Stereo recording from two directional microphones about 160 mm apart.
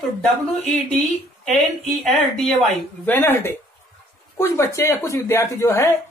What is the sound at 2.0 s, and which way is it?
Speech, 5° left (ahead or behind).